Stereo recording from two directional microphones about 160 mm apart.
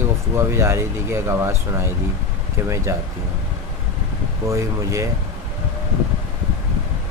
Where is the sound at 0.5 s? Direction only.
15° right (ahead or behind).